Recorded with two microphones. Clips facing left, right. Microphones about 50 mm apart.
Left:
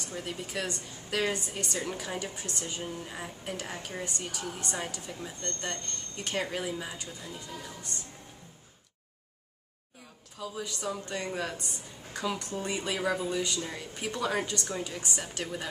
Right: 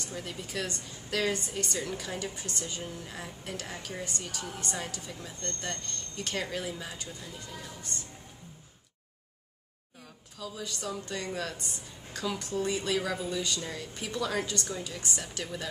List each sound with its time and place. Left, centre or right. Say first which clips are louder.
0.0 s a woman's voice: left 2 dB; centre
10.4 s a woman's voice: left 2 dB; centre